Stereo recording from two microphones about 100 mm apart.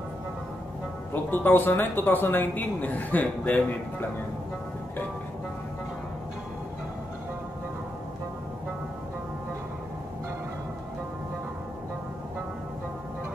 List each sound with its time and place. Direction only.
1.1 s speech: 20° left (ahead or behind)